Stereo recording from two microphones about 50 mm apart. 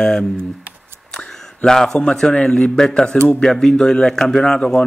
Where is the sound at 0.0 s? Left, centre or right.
Centre.